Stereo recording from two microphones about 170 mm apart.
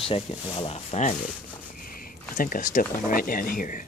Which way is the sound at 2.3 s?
55° left (ahead or behind).